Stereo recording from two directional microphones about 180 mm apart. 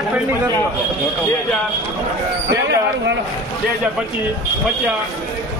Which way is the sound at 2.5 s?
85° right.